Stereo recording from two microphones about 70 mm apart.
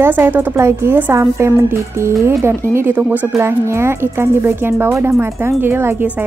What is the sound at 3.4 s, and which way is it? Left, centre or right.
Speech, right.